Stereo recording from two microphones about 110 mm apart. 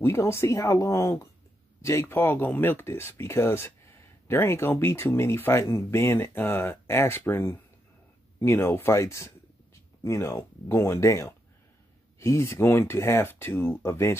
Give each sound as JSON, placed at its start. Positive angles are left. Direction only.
{"t": 0.0, "sound": "speech", "side_deg": 25}